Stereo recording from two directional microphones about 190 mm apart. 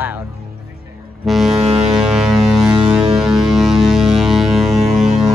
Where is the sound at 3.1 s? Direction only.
Centre (ahead or behind).